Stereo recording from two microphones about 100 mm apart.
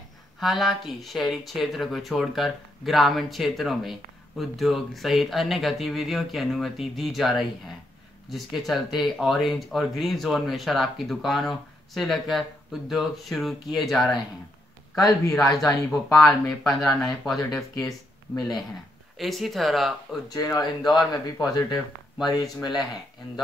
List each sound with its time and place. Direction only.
0.4 s speech: centre (ahead or behind)
15.0 s speech: 35° left (ahead or behind)
15.5 s speech: centre (ahead or behind)
19.1 s speech: centre (ahead or behind)
20.3 s speech: 40° left (ahead or behind)